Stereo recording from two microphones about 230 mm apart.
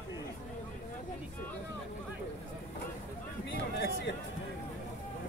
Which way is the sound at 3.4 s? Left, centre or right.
Left.